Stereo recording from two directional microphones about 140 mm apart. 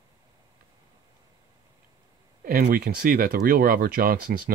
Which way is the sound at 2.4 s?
90° right.